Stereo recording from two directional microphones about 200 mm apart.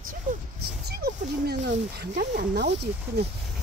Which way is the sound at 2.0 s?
40° right (ahead or behind).